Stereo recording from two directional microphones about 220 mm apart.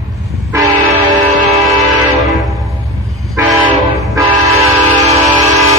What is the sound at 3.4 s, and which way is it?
Train, 15° right (ahead or behind).